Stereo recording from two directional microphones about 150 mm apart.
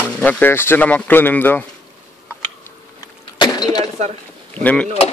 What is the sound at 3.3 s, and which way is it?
Throat clearing, 30° left (ahead or behind).